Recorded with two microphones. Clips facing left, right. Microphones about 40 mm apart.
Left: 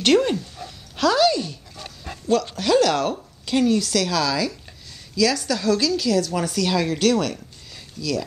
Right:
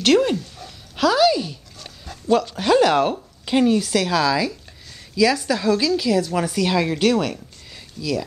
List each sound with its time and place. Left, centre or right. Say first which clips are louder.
0.0 s speech: right 1 dB; centre
2.1 s dog: left 3 dB; left
2.5 s a woman's voice: right 3 dB; centre